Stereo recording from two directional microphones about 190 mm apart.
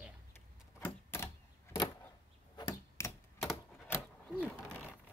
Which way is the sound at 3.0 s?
15° left (ahead or behind).